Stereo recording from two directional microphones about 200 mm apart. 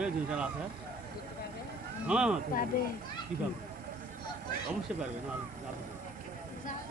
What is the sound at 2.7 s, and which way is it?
Speech, 45° left (ahead or behind).